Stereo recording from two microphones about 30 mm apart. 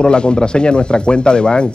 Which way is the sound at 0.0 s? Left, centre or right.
Left.